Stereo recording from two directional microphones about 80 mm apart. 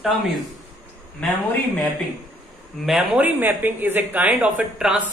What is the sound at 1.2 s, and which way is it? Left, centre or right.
Speech, centre.